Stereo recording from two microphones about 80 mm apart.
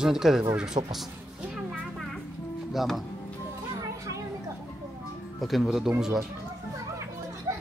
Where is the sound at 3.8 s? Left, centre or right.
Right.